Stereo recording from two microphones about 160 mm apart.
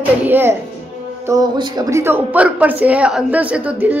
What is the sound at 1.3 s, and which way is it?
Speech, 25° right (ahead or behind).